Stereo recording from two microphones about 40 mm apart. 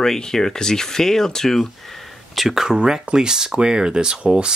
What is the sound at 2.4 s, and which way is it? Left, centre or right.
Speech, centre.